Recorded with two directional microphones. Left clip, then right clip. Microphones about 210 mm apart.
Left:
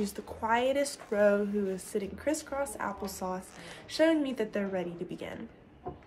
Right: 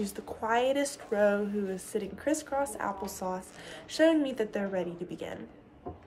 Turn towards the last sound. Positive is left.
turn(degrees=-10)  # may be behind; listen again after turning